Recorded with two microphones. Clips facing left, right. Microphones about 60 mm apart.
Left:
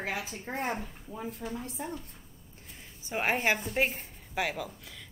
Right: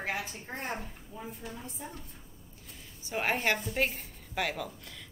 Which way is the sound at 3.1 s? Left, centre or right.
Centre.